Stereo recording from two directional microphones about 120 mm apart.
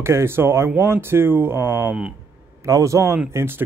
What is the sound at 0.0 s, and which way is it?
Speech, 20° right (ahead or behind).